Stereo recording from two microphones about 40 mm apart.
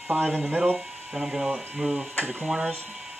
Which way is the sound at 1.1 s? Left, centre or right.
Centre.